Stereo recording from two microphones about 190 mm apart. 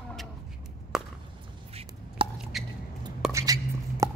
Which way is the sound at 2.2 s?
30° right (ahead or behind).